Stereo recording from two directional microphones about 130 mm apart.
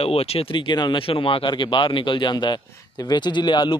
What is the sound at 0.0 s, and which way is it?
Speech, 50° left (ahead or behind).